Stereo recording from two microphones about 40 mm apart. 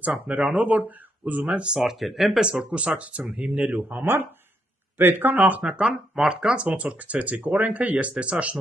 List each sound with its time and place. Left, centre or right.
0.0 s speech: right
1.9 s speech: centre
2.4 s speech: right
3.9 s speech: right
5.8 s speech: right
6.7 s speech: right
8.1 s speech: right